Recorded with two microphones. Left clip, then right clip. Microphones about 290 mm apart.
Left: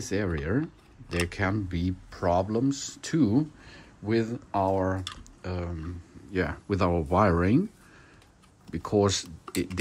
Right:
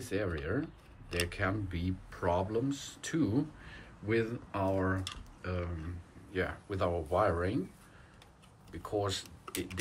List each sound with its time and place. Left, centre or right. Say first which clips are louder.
0.0 s speech: left 5 dB; centre
8.7 s speech: left 10 dB; left